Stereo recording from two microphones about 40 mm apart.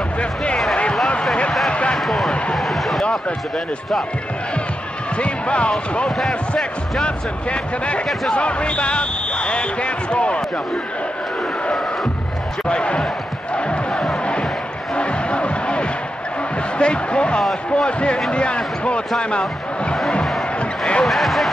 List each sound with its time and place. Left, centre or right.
0.2 s basketball bounce: left
1.7 s basketball bounce: left
2.0 s a sound: centre
5.1 s speech: left
6.0 s speech: centre
7.0 s speech: left
12.6 s speech: left
13.6 s crowd: left
15.0 s music: left
16.7 s speech: left
20.5 s basketball bounce: left
21.0 s speech: centre